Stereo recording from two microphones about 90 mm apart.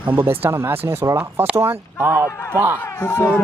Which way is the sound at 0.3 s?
30° right (ahead or behind).